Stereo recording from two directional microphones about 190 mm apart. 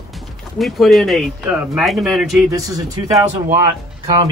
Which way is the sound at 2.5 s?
20° right (ahead or behind).